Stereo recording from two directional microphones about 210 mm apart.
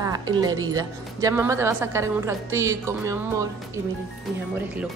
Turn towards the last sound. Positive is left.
turn(degrees=-15)  # may be behind; listen again after turning